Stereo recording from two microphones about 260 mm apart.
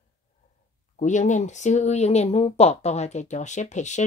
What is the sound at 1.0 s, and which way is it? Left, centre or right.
Speech, left.